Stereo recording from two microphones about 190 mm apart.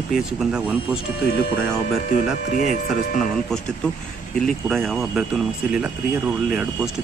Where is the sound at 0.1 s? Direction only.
Centre (ahead or behind).